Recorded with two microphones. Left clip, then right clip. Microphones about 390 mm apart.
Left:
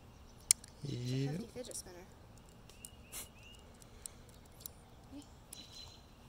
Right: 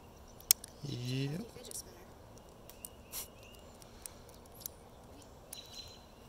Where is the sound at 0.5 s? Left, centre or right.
Centre.